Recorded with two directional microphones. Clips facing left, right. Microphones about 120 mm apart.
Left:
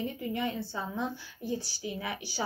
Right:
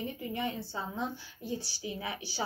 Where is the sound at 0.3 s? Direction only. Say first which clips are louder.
Left 2 dB; 25° right (ahead or behind).